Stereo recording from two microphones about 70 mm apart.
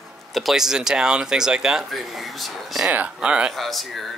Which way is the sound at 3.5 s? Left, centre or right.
Centre.